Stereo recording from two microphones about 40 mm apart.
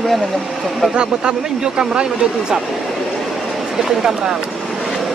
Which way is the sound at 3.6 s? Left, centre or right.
Centre.